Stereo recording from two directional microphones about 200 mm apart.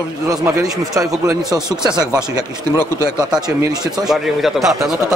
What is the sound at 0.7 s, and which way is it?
Speech, 15° right (ahead or behind).